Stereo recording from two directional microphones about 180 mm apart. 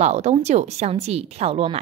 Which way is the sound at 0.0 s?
40° right (ahead or behind).